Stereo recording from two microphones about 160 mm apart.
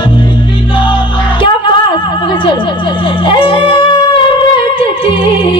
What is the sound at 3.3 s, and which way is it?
Music, 35° left (ahead or behind).